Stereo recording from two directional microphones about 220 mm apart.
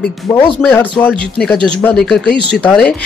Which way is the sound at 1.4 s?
5° left (ahead or behind).